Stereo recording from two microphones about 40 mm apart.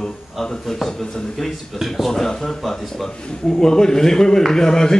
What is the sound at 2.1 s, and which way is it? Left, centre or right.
Speech, centre.